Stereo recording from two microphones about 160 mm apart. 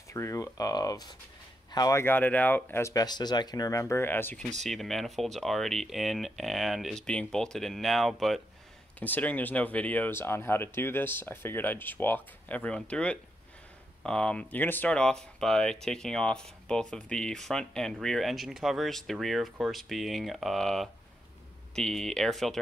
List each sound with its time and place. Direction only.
0.1 s speech: 20° left (ahead or behind)
4.6 s speech: centre (ahead or behind)